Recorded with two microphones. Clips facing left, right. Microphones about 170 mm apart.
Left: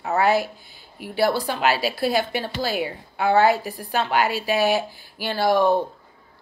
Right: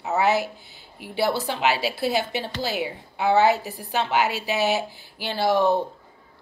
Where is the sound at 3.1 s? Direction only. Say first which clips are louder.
Left 1 dB; 55° left (ahead or behind).